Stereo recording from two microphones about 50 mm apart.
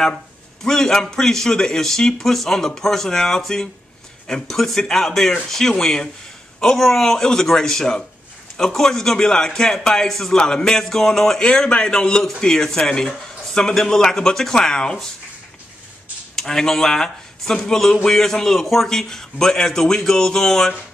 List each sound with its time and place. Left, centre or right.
0.7 s a man's voice: centre
16.3 s a man's voice: centre